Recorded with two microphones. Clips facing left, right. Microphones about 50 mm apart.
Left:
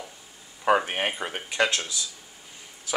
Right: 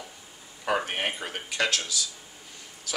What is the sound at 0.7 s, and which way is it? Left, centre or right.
Speech, centre.